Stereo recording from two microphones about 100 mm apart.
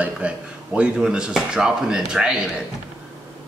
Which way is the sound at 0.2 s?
10° right (ahead or behind).